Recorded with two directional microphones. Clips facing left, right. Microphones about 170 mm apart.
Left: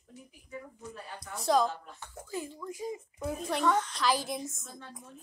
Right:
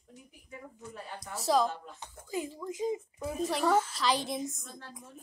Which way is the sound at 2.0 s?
15° right (ahead or behind).